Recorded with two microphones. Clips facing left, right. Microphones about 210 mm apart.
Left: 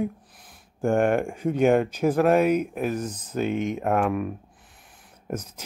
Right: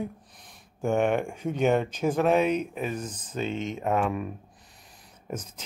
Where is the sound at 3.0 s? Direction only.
60° left (ahead or behind).